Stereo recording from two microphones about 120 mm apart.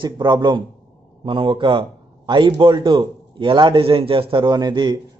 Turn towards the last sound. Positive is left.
turn(degrees=-40)  # may be behind; listen again after turning